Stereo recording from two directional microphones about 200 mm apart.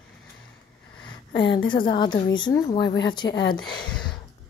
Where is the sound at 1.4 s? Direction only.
25° left (ahead or behind).